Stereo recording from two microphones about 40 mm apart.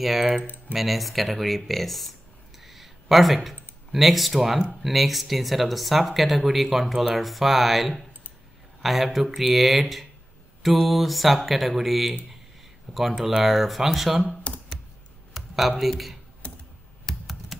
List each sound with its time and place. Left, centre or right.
0.0 s speech: centre
0.4 s speech: left
0.7 s speech: centre
2.6 s a sound: centre
4.8 s speech: centre
13.4 s speech: centre
14.5 s computer keyboard: left
15.3 s computer keyboard: centre
15.8 s speech: centre
17.1 s computer keyboard: centre
17.5 s typing: centre